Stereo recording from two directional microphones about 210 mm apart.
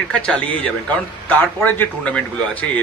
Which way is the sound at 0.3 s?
5° left (ahead or behind).